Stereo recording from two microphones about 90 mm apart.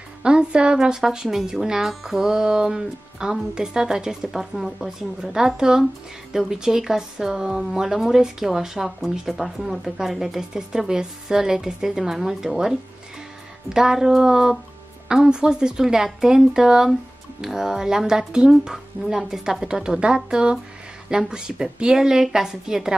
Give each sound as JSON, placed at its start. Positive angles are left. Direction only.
{"t": 0.2, "sound": "speech", "side_deg": -10}
{"t": 13.7, "sound": "speech", "side_deg": -5}